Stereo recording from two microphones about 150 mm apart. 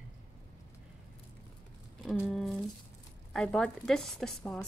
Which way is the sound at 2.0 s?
Centre (ahead or behind).